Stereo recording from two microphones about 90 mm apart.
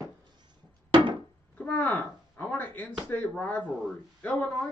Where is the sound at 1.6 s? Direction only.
15° left (ahead or behind).